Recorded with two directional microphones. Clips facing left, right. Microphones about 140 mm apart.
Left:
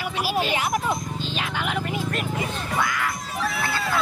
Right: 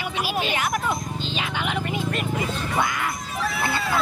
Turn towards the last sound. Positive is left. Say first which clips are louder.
# right 1 dB
turn(degrees=0)  # may be behind; listen again after turning